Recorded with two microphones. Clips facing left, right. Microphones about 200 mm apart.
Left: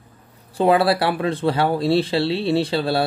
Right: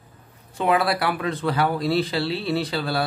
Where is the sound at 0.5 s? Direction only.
30° left (ahead or behind).